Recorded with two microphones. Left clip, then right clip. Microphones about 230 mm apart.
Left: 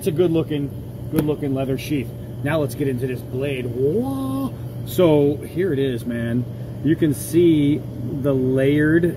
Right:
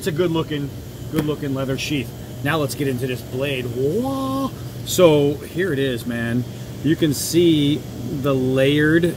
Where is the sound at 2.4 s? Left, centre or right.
Centre.